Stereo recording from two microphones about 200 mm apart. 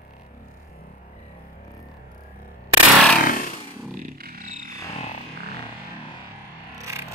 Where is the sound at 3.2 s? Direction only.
45° left (ahead or behind).